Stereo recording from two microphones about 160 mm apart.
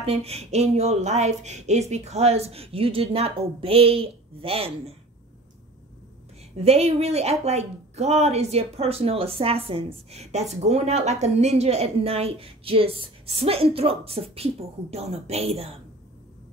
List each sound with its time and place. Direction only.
0.0 s speech: 40° right (ahead or behind)
6.5 s speech: 40° right (ahead or behind)